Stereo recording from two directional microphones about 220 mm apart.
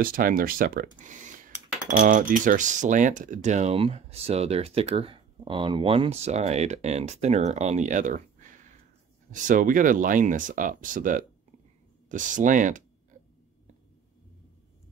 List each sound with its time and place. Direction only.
0.0 s speech: 40° right (ahead or behind)